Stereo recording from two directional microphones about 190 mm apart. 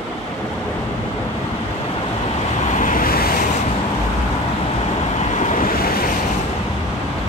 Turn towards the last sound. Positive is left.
turn(degrees=50)  # may be behind; listen again after turning